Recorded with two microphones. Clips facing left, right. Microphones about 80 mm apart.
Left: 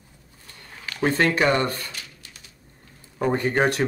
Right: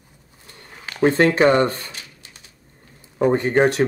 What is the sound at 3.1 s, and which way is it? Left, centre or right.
Speech, right.